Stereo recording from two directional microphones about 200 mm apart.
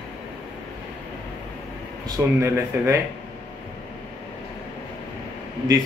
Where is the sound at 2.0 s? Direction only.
15° right (ahead or behind).